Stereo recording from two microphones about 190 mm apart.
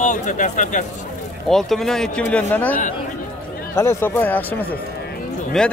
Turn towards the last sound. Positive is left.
turn(degrees=0)  # may be behind; listen again after turning